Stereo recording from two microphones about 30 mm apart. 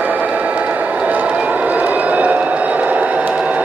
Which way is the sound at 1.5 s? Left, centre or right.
Right.